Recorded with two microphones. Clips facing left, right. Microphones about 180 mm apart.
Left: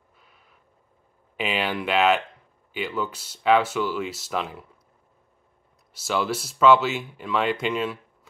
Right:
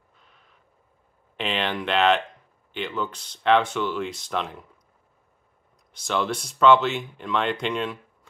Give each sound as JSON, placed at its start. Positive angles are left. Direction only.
{"t": 1.3, "sound": "speech", "side_deg": 5}
{"t": 5.9, "sound": "speech", "side_deg": 5}